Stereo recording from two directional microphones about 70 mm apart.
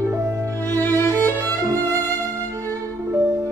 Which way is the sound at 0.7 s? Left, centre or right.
Left.